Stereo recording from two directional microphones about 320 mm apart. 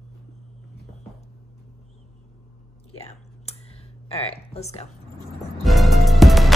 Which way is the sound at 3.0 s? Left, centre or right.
Centre.